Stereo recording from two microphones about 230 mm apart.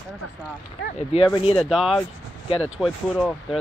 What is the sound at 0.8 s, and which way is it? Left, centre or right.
Speech, left.